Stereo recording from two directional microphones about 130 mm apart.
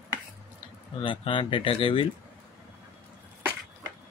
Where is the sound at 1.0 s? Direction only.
40° left (ahead or behind).